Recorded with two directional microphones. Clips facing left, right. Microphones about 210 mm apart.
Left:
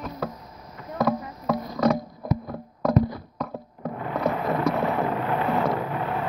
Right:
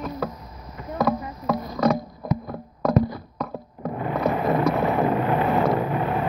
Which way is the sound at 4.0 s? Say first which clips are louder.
Right 3 dB; 15° right (ahead or behind).